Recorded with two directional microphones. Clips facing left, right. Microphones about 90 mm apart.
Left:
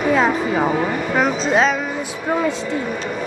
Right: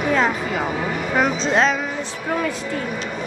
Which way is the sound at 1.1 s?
Centre (ahead or behind).